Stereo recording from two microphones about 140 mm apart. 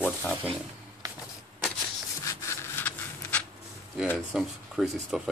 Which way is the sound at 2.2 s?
20° left (ahead or behind).